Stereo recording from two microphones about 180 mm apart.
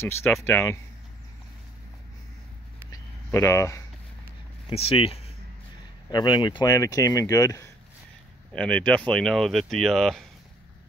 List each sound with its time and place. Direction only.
0.5 s speech: 10° left (ahead or behind)
2.9 s a sound: 15° left (ahead or behind)
4.6 s speech: 30° left (ahead or behind)
8.5 s speech: 5° left (ahead or behind)